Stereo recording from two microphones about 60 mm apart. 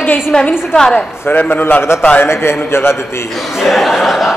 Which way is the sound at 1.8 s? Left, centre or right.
Left.